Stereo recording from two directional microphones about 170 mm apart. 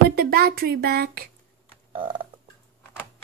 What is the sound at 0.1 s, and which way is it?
Speech, 65° right (ahead or behind).